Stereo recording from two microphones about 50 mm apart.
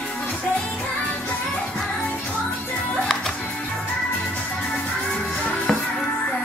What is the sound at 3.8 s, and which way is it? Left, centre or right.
Music, centre.